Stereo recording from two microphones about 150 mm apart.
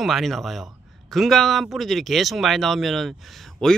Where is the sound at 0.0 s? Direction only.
Centre (ahead or behind).